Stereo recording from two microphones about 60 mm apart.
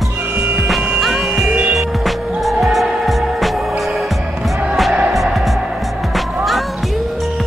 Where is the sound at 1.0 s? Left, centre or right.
Centre.